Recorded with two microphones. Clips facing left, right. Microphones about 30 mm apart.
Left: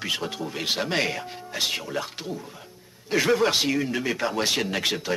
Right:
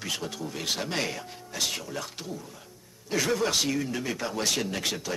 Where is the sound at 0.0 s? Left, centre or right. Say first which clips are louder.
Left 5 dB; left.